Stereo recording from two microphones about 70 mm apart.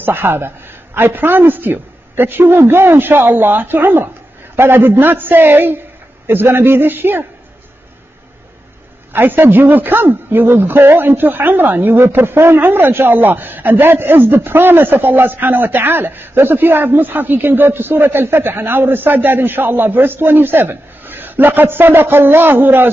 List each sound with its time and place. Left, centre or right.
0.0 s a woman's voice: right
9.1 s a man's voice: right